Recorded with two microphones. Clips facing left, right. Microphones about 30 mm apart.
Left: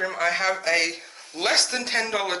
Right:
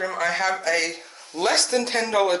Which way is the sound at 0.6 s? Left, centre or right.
Left.